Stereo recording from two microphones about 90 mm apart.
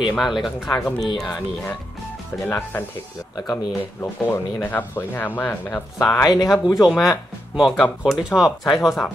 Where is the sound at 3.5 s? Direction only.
25° left (ahead or behind).